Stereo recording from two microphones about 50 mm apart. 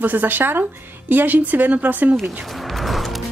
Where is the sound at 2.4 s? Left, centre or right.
Centre.